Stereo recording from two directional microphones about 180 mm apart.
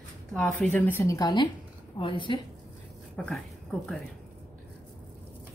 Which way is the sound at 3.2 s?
5° left (ahead or behind).